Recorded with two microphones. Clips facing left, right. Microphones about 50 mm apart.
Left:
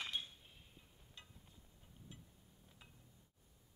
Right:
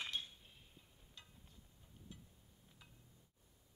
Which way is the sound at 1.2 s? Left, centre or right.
Left.